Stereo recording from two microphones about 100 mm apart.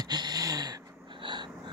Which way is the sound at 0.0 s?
45° right (ahead or behind).